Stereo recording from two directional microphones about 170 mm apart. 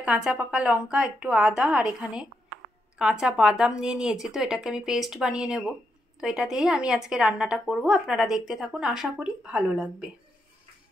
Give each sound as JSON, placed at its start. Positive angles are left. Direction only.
{"t": 0.0, "sound": "speech", "side_deg": -5}